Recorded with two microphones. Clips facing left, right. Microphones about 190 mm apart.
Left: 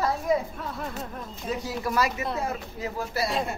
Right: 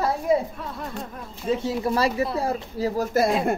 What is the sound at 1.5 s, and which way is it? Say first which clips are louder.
A woman's voice: right 5 dB; 25° right (ahead or behind).